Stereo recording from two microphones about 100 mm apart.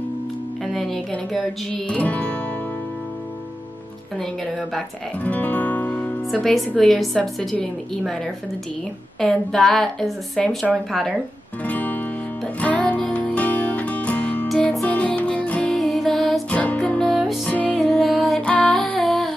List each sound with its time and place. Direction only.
0.7 s a woman's voice: 5° left (ahead or behind)
4.2 s a woman's voice: 5° left (ahead or behind)
5.2 s music: 15° left (ahead or behind)
6.4 s a woman's voice: centre (ahead or behind)
9.2 s a woman's voice: 5° left (ahead or behind)
11.6 s music: 15° left (ahead or behind)
14.5 s music: centre (ahead or behind)
14.9 s music: 15° left (ahead or behind)
15.7 s music: 5° left (ahead or behind)
16.4 s music: 15° left (ahead or behind)
17.1 s music: centre (ahead or behind)
17.5 s music: 15° left (ahead or behind)
17.7 s music: centre (ahead or behind)
18.9 s humming: centre (ahead or behind)